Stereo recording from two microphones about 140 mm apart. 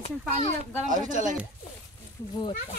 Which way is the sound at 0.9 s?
65° right (ahead or behind).